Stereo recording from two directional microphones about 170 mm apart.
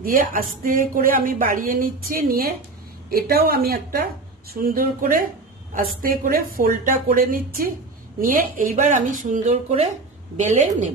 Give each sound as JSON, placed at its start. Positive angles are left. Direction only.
{"t": 0.0, "sound": "a woman's voice", "side_deg": -55}